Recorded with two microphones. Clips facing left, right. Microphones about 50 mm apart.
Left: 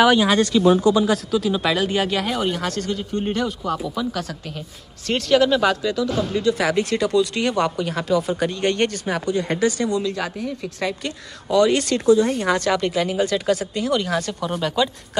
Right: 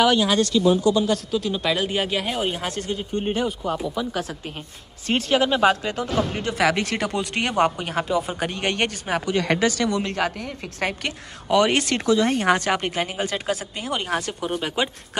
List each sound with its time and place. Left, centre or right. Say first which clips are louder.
0.0 s speech: left 3 dB; centre
1.3 s speech: left 3 dB; centre
2.5 s speech: left 3 dB; right
8.0 s speech: left 2 dB; centre
8.4 s speech: left 4 dB; right
9.3 s speech: even; right
12.1 s speech: left 4 dB; right
12.4 s speech: even; right
13.2 s speech: left 5 dB; centre